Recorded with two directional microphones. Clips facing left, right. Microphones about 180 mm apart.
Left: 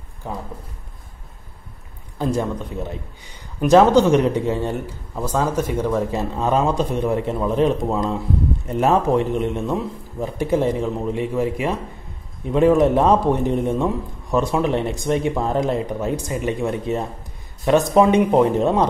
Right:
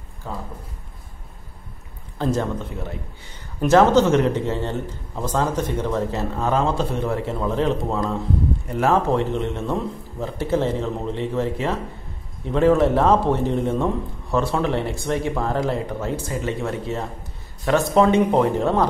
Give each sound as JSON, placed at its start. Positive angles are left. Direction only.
{"t": 0.2, "sound": "a man's voice", "side_deg": 20}
{"t": 2.1, "sound": "a man's voice", "side_deg": 10}